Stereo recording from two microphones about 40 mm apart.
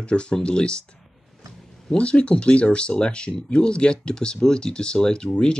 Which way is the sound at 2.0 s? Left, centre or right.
Left.